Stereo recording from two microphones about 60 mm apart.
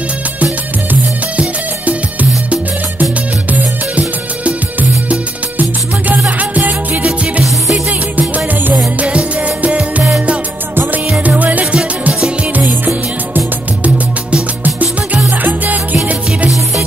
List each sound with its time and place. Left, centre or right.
1.3 s music: right
4.5 s music: right
7.4 s music: centre
9.0 s music: right
11.2 s music: right